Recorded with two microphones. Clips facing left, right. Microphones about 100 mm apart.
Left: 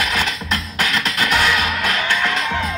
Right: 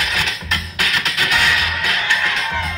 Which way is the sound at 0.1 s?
45° left (ahead or behind).